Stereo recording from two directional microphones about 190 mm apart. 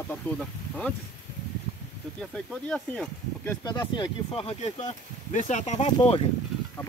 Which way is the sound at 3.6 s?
20° left (ahead or behind).